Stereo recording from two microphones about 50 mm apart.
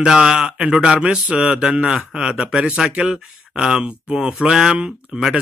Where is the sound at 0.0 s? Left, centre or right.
Centre.